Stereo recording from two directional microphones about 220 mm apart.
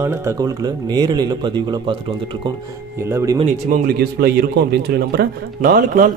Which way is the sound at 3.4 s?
40° right (ahead or behind).